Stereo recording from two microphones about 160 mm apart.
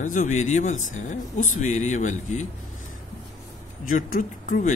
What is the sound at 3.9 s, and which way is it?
Speech, 60° left (ahead or behind).